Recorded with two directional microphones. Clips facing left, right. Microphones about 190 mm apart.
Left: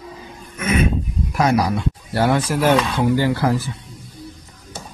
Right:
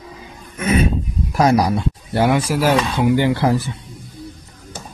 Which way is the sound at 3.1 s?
20° right (ahead or behind).